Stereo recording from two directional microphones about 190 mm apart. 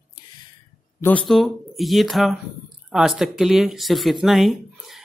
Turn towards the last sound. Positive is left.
turn(degrees=0)  # may be behind; listen again after turning